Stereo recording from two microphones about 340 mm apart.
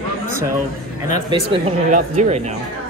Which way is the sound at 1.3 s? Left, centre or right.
Centre.